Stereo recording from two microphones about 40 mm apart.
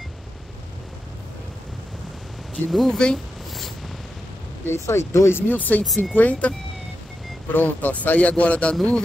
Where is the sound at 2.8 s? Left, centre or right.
Centre.